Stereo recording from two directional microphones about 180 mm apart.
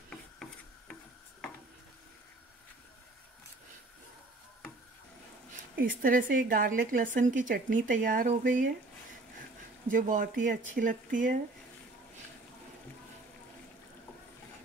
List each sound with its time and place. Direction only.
0.1 s filing: 5° left (ahead or behind)
5.8 s a woman's voice: 50° right (ahead or behind)
9.8 s a woman's voice: 50° right (ahead or behind)